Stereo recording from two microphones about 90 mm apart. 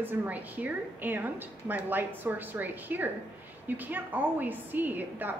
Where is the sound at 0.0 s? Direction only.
20° right (ahead or behind).